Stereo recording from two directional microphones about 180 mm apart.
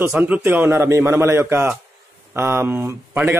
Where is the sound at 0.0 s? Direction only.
10° right (ahead or behind).